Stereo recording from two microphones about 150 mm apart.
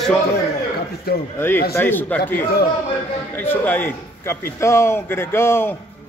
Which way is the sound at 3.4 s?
15° left (ahead or behind).